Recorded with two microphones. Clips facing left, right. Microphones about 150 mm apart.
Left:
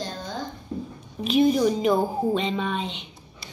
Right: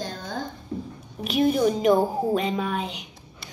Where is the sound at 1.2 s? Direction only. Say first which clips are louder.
Left 2 dB; 5° right (ahead or behind).